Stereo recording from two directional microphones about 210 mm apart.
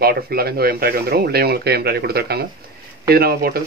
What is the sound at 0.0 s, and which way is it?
Speech, 45° right (ahead or behind).